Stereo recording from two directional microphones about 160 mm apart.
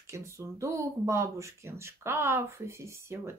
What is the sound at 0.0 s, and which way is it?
Speech, 20° right (ahead or behind).